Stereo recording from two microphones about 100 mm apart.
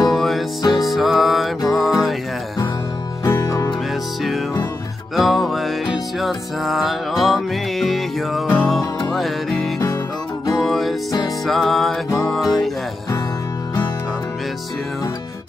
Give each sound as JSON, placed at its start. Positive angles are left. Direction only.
{"t": 0.1, "sound": "music", "side_deg": 0}
{"t": 3.3, "sound": "music", "side_deg": 30}
{"t": 5.1, "sound": "music", "side_deg": 0}